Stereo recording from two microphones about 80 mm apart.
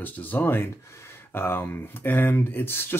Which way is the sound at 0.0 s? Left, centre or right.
Left.